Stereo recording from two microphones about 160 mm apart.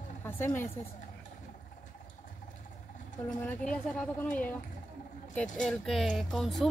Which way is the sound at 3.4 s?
10° left (ahead or behind).